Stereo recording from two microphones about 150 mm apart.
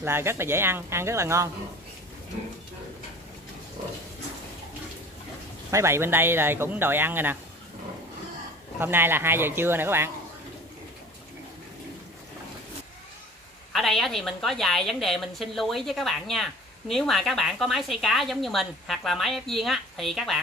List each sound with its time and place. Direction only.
0.0 s speech: 15° right (ahead or behind)
5.7 s speech: 20° right (ahead or behind)
8.7 s speech: 15° right (ahead or behind)
13.7 s a woman's voice: centre (ahead or behind)